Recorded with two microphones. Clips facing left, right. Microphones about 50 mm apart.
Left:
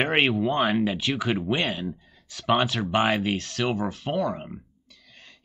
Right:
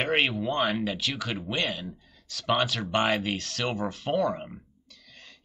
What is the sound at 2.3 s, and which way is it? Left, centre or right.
Speech, centre.